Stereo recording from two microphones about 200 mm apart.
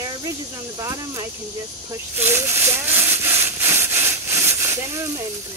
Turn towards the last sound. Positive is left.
turn(degrees=-15)  # may be behind; listen again after turning